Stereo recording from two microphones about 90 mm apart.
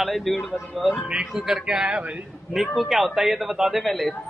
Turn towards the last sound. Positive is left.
turn(degrees=0)  # may be behind; listen again after turning